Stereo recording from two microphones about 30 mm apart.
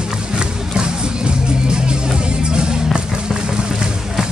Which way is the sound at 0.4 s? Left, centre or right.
Right.